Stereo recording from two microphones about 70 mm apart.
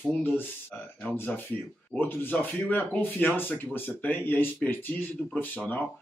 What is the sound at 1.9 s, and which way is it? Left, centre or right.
Speech, left.